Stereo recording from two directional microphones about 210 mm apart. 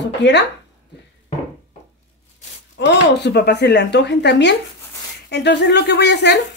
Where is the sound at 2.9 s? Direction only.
55° left (ahead or behind).